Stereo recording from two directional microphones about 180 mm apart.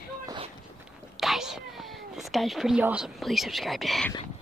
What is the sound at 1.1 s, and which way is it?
Whispering, centre (ahead or behind).